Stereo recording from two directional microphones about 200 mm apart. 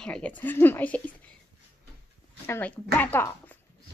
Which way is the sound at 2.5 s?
10° left (ahead or behind).